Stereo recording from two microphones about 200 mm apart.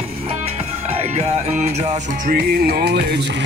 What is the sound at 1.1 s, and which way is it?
Music, 35° right (ahead or behind).